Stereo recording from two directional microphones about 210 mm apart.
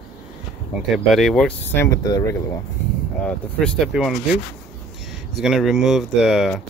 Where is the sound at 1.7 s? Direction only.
15° left (ahead or behind).